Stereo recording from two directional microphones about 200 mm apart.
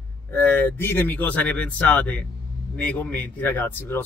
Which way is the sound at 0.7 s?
10° left (ahead or behind).